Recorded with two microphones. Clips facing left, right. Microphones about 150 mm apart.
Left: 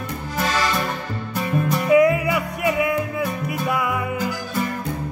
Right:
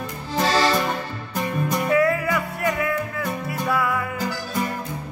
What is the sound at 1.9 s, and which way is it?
Music, 15° left (ahead or behind).